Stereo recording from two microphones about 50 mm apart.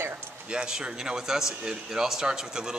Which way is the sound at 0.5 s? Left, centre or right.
Centre.